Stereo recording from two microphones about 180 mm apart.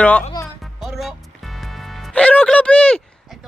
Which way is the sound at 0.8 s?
Centre (ahead or behind).